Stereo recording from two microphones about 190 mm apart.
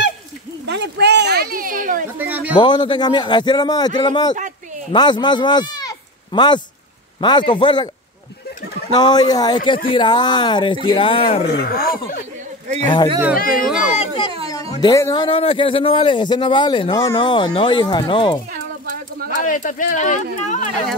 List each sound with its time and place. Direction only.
0.7 s speech: 65° right (ahead or behind); by 2.0 s 45° right (ahead or behind)
2.1 s speech: 10° right (ahead or behind)
2.5 s a man's voice: 25° left (ahead or behind)
8.9 s a man's voice: 20° left (ahead or behind)
11.4 s speech: 50° left (ahead or behind)
12.8 s a man's voice: 25° left (ahead or behind)
13.4 s speech: 50° left (ahead or behind)
14.0 s a sound: 25° left (ahead or behind)
14.8 s a man's voice: 20° left (ahead or behind)
15.2 s a man's voice: 30° left (ahead or behind)
18.5 s a sound: 50° right (ahead or behind)
19.3 s speech: 45° left (ahead or behind)